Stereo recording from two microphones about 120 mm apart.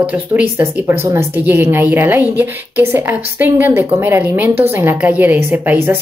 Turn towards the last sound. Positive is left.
turn(degrees=-15)  # may be behind; listen again after turning